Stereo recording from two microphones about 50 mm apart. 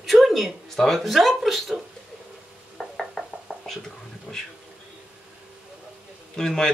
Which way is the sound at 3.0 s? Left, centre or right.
Centre.